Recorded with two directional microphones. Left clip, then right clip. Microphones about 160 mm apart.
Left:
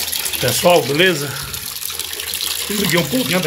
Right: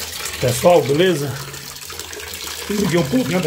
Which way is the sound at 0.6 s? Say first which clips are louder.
Even; 10° right (ahead or behind).